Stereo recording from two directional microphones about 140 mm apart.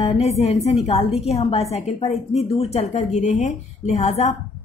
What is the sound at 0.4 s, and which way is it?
A woman's voice, 50° left (ahead or behind).